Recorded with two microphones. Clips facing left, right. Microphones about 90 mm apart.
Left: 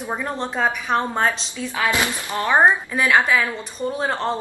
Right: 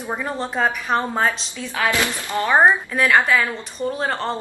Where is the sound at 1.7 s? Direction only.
20° left (ahead or behind).